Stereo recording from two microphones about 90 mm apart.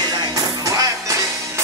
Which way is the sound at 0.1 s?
45° right (ahead or behind).